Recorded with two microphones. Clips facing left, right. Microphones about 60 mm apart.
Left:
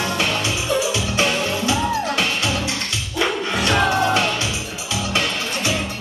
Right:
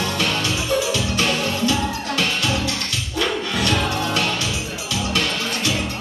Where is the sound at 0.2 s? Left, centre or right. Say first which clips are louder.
Even; left.